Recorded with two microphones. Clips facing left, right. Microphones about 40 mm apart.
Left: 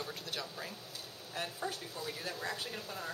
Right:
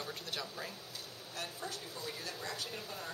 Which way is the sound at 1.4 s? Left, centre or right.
Centre.